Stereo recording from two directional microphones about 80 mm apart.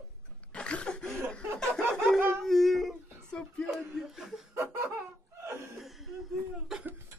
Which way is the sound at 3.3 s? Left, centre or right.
Centre.